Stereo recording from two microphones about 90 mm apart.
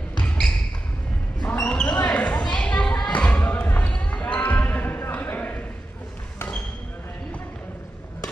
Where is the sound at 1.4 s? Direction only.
15° left (ahead or behind).